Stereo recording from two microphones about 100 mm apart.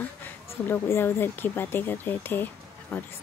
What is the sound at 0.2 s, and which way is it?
Speech, 20° left (ahead or behind).